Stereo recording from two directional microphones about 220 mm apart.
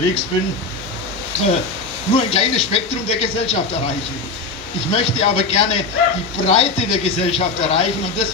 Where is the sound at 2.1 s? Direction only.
30° left (ahead or behind).